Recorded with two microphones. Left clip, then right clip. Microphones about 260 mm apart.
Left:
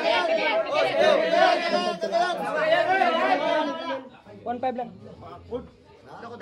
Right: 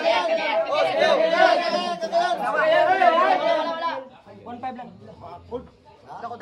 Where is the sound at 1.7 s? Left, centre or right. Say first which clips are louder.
Right 1 dB; right.